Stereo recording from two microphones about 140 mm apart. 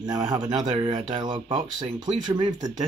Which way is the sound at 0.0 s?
30° right (ahead or behind).